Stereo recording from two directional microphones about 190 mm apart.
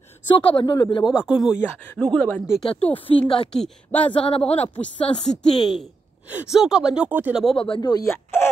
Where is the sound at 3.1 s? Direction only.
30° left (ahead or behind).